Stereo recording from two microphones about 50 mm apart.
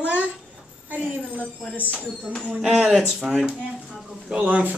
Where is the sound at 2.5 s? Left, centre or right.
Centre.